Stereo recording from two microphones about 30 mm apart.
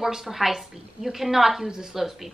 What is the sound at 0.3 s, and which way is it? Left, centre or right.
A woman's voice, centre.